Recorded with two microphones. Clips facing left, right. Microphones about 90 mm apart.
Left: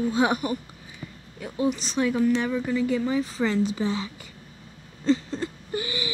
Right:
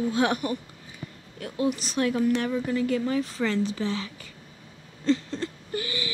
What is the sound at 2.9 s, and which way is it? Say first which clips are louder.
Speech: left 1 dB; 5° left (ahead or behind).